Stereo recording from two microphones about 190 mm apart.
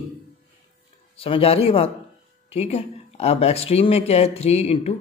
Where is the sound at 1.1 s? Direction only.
30° left (ahead or behind).